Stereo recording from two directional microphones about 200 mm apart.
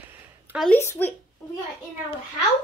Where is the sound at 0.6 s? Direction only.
10° left (ahead or behind).